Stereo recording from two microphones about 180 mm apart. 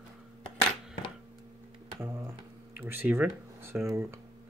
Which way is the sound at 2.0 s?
15° right (ahead or behind).